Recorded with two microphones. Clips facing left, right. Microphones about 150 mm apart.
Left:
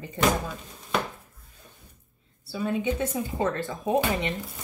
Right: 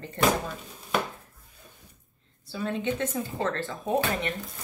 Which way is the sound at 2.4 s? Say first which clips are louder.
Left 2 dB; 10° left (ahead or behind).